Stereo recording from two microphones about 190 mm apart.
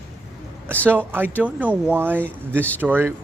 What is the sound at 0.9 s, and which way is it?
Speech, 10° right (ahead or behind).